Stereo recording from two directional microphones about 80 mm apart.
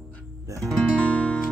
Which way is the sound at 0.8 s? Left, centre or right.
Centre.